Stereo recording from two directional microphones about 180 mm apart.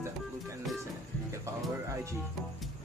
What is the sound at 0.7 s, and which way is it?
Speech, centre (ahead or behind).